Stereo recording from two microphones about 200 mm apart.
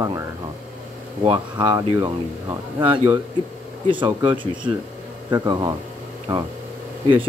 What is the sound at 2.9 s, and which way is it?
Speech, 10° right (ahead or behind).